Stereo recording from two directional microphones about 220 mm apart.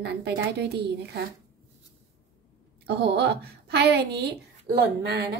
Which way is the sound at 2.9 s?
50° right (ahead or behind).